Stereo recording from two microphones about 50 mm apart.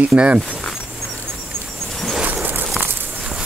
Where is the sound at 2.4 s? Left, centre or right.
Right.